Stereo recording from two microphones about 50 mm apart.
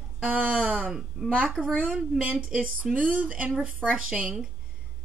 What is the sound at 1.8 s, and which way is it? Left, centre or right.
A woman's voice, centre.